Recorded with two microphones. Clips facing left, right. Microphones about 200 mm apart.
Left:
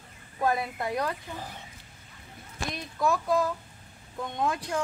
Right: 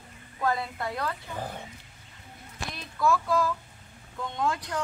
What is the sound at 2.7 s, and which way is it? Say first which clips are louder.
Speech: right 2 dB; 20° left (ahead or behind).